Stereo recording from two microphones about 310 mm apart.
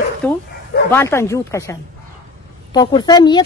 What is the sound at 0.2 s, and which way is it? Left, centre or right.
A woman's voice, centre.